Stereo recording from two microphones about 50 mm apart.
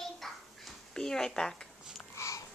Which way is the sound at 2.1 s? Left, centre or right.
Left.